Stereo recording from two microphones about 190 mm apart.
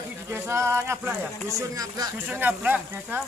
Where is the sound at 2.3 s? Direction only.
10° right (ahead or behind).